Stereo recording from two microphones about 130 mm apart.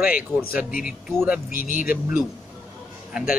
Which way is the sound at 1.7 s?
90° left.